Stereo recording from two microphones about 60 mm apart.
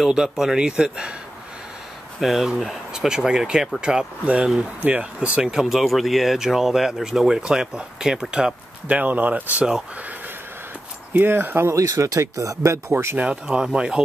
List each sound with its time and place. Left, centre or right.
0.0 s speech: centre
2.1 s speech: centre; by 5.4 s right
5.4 s speech: centre
8.8 s speech: right
11.1 s speech: right
11.9 s speech: right
13.2 s speech: centre